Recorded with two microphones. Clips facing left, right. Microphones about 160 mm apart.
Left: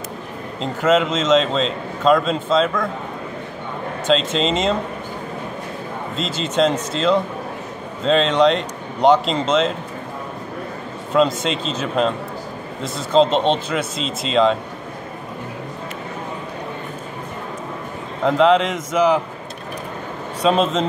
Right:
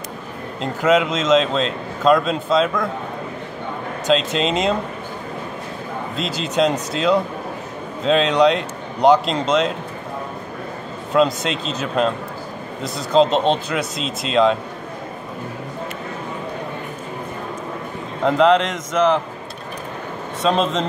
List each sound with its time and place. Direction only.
0.6 s a man's voice: 5° right (ahead or behind)
4.1 s a man's voice: 5° right (ahead or behind)
6.1 s a man's voice: centre (ahead or behind)
11.1 s a man's voice: centre (ahead or behind)
13.1 s a man's voice: centre (ahead or behind)
18.2 s a man's voice: centre (ahead or behind)
20.4 s a man's voice: 5° left (ahead or behind)